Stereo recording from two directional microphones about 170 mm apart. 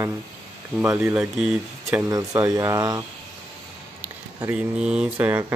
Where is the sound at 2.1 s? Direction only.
20° right (ahead or behind).